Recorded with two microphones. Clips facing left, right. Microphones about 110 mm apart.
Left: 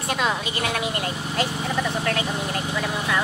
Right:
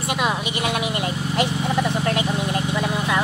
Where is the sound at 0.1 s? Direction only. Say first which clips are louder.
Right 1 dB; 10° right (ahead or behind).